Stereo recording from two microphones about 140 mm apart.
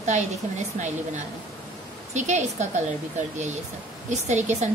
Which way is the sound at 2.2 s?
55° right (ahead or behind).